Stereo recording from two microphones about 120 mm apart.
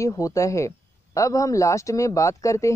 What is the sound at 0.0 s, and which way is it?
Speech, 25° left (ahead or behind).